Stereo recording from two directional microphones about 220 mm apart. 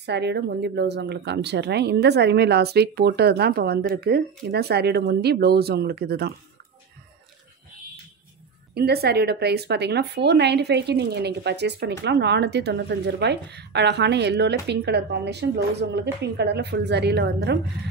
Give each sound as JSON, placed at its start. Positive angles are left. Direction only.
{"t": 0.0, "sound": "speech", "side_deg": -50}
{"t": 8.7, "sound": "speech", "side_deg": -45}